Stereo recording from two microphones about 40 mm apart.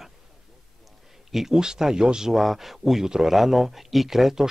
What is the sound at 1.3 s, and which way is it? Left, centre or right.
Speech, centre.